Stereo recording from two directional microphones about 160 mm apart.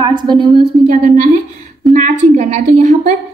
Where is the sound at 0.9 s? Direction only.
45° right (ahead or behind).